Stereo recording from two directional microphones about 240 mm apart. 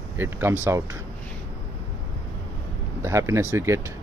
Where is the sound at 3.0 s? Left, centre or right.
Centre.